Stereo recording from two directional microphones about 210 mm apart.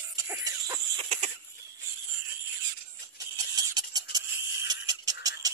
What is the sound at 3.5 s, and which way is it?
Tick-tock, 20° right (ahead or behind).